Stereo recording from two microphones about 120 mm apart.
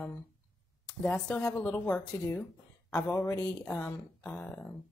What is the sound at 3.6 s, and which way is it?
Speech, 10° left (ahead or behind).